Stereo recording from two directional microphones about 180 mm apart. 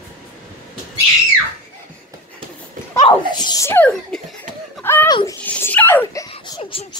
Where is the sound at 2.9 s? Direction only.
25° left (ahead or behind); by 4.2 s 5° left (ahead or behind).